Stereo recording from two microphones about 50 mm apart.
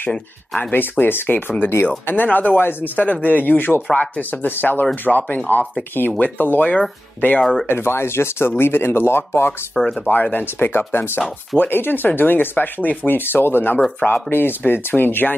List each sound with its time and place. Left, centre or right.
0.6 s speech: left
7.6 s speech: left
9.8 s speech: centre
10.3 s speech: left
13.9 s speech: left
14.3 s speech: left